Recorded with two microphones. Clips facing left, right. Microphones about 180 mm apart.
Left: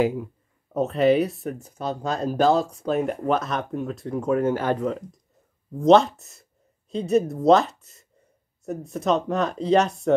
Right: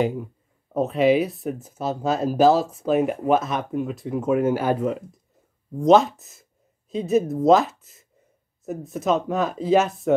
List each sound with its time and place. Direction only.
0.7 s speech: centre (ahead or behind)